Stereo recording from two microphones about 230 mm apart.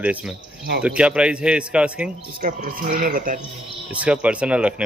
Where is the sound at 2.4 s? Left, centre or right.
Right.